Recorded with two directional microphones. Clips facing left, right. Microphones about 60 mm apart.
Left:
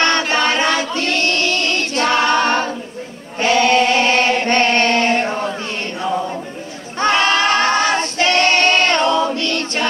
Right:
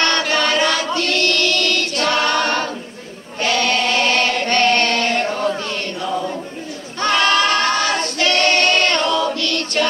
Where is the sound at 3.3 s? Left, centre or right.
Left.